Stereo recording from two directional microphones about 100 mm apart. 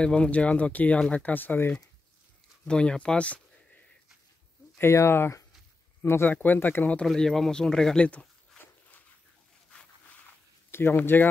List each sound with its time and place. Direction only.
0.0 s speech: 10° left (ahead or behind)
4.7 s speech: 25° left (ahead or behind)
7.1 s speech: 5° left (ahead or behind)
10.7 s speech: 20° left (ahead or behind)